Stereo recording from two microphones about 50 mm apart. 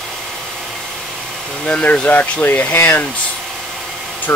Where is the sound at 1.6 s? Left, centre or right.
Left.